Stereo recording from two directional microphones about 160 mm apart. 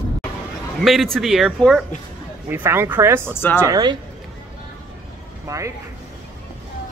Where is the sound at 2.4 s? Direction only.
15° right (ahead or behind).